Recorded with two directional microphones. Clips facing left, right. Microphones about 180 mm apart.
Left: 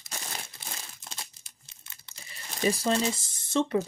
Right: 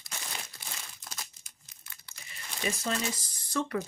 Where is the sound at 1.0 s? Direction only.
25° left (ahead or behind).